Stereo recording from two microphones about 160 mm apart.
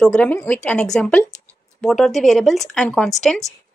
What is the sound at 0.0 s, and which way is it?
A woman's voice, 5° left (ahead or behind).